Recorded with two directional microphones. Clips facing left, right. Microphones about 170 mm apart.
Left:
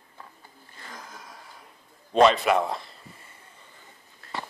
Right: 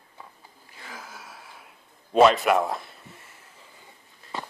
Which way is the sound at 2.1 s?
Centre (ahead or behind).